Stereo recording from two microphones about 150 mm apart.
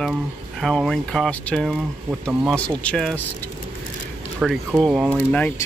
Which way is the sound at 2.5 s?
5° left (ahead or behind).